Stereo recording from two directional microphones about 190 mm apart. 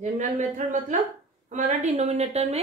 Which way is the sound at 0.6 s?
40° right (ahead or behind).